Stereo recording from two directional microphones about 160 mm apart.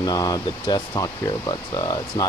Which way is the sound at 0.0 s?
25° left (ahead or behind).